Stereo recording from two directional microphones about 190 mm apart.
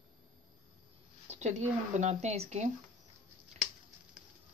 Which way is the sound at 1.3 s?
35° right (ahead or behind).